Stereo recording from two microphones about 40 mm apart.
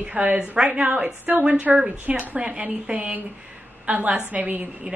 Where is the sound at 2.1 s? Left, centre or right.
Right.